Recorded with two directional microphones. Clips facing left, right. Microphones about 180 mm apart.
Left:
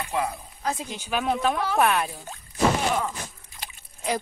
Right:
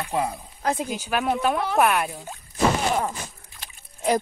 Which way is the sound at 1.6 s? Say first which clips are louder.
Right 2 dB; 15° right (ahead or behind).